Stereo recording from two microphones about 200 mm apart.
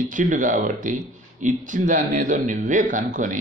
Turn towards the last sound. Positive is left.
turn(degrees=-40)  # may be behind; listen again after turning